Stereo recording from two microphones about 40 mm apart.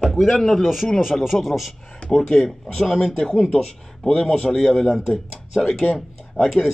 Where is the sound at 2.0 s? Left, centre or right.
Centre.